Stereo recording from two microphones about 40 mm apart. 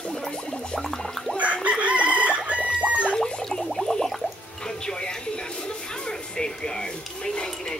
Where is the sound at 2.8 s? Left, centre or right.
Right.